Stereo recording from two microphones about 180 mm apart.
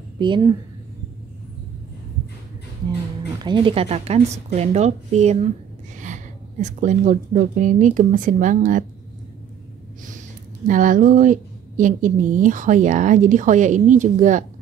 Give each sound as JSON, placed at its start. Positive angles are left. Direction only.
{"t": 0.2, "sound": "speech", "side_deg": -25}
{"t": 3.3, "sound": "a woman's voice", "side_deg": -25}
{"t": 10.7, "sound": "speech", "side_deg": -45}